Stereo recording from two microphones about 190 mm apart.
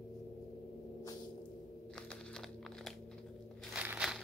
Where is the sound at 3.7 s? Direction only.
5° right (ahead or behind).